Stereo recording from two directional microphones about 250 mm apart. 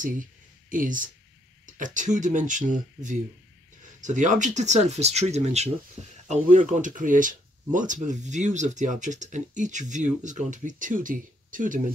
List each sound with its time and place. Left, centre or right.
0.7 s speech: right